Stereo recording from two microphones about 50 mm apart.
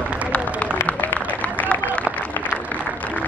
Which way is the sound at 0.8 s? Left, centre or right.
Left.